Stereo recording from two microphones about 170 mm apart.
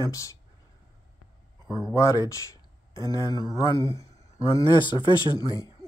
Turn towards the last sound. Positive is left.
turn(degrees=25)  # may be behind; listen again after turning